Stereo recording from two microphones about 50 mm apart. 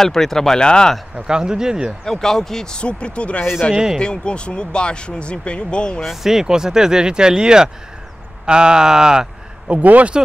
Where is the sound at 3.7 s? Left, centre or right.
Centre.